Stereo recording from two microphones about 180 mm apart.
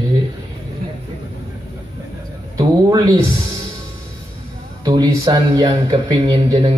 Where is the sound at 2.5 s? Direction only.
25° right (ahead or behind).